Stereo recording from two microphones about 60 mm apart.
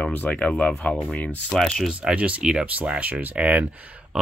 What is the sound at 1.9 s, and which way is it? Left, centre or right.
Speech, centre.